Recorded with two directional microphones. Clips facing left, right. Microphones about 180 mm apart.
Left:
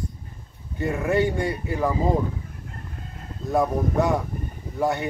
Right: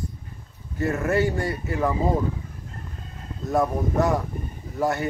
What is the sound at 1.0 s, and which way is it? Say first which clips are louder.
Speech: left 2 dB; centre (ahead or behind).